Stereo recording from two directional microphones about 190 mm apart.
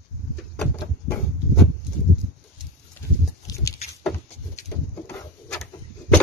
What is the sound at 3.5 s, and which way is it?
Patter, 20° left (ahead or behind).